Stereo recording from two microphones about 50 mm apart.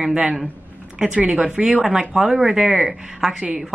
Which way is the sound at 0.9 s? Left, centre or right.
Right.